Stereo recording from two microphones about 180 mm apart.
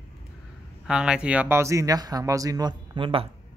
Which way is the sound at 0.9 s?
5° right (ahead or behind).